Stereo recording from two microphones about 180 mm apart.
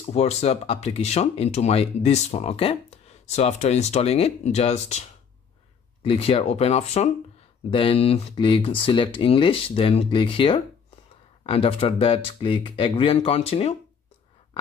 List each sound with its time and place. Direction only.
0.0 s speech: 35° left (ahead or behind)
6.0 s speech: 30° left (ahead or behind)